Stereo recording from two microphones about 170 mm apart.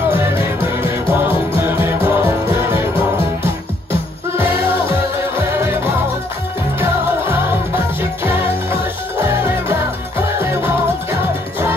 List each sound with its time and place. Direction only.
1.2 s music: 10° right (ahead or behind)
9.2 s music: 10° right (ahead or behind)